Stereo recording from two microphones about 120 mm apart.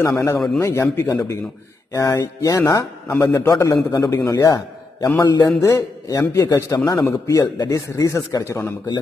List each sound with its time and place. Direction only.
0.0 s a man's voice: 25° left (ahead or behind)
6.8 s a man's voice: 15° left (ahead or behind)
7.1 s a man's voice: 30° left (ahead or behind)